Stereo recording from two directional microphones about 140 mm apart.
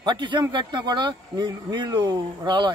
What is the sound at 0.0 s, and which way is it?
Speech, 35° right (ahead or behind).